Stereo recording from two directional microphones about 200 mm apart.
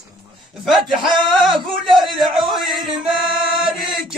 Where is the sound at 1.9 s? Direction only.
Centre (ahead or behind).